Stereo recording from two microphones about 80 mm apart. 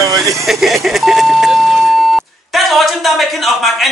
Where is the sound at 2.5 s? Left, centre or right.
Centre.